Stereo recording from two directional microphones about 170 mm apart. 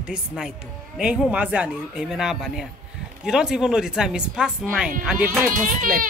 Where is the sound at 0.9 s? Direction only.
Centre (ahead or behind).